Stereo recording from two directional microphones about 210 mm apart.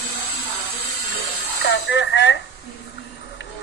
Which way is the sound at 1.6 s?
60° left (ahead or behind).